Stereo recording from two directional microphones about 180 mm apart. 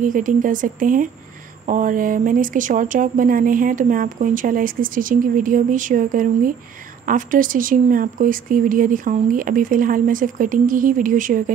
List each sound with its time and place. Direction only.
0.0 s speech: 45° right (ahead or behind)